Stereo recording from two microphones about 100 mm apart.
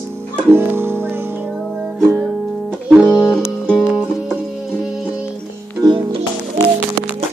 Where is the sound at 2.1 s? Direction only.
10° left (ahead or behind).